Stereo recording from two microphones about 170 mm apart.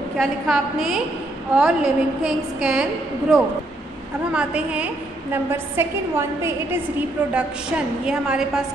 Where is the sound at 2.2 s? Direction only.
5° right (ahead or behind).